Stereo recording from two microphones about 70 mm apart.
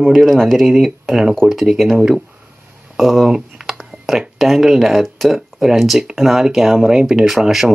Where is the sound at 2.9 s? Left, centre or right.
Centre.